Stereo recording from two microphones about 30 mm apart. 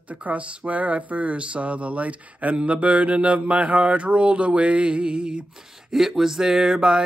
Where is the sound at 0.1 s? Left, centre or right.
Right.